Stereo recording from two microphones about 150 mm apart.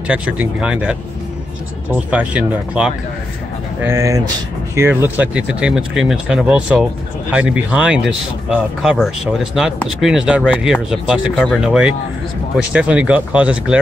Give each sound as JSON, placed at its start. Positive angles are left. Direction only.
{"t": 0.1, "sound": "speech", "side_deg": -10}
{"t": 3.8, "sound": "speech", "side_deg": -20}